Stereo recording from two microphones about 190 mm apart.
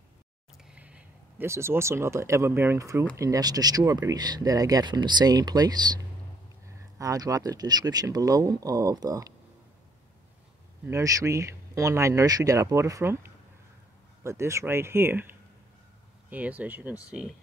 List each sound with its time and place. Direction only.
0.7 s speech: 5° right (ahead or behind)
7.0 s speech: 20° right (ahead or behind)
10.9 s speech: 15° right (ahead or behind)
14.2 s speech: 15° right (ahead or behind)